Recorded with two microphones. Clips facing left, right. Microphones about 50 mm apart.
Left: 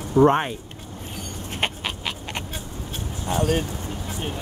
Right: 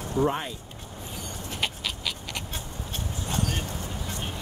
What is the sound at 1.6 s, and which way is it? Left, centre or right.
Dog, left.